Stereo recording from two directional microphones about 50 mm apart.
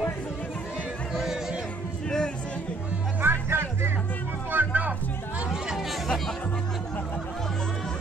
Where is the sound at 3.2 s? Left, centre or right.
Right.